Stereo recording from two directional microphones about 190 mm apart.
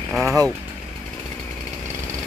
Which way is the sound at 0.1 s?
Centre (ahead or behind).